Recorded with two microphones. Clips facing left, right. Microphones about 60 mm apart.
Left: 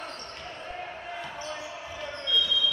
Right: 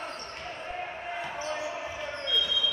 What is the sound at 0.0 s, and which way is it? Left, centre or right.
Basketball bounce, centre.